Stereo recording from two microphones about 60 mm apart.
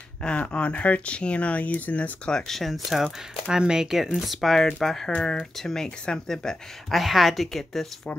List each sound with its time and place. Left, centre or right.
0.4 s speech: left
2.3 s speech: centre